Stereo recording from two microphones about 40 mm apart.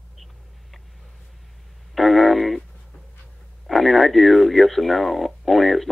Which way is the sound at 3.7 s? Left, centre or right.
Centre.